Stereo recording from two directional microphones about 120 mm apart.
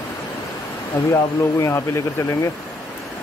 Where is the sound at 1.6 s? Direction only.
20° left (ahead or behind).